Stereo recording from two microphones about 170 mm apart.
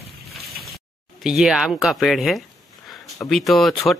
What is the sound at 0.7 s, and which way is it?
Speech, centre (ahead or behind).